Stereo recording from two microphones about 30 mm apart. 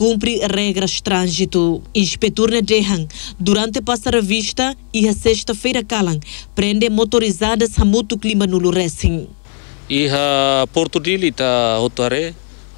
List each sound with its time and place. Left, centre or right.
0.0 s speech: right